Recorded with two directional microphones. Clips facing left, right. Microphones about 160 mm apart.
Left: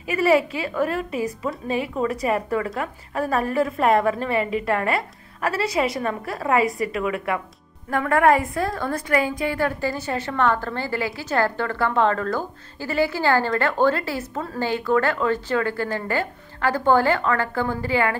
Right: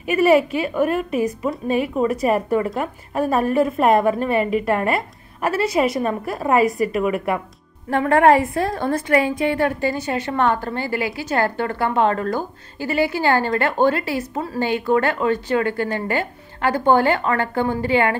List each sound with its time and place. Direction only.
0.2 s a woman's voice: 20° right (ahead or behind)
7.9 s a woman's voice: 25° right (ahead or behind)